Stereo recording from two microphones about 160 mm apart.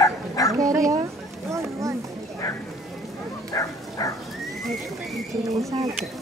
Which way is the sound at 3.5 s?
20° left (ahead or behind).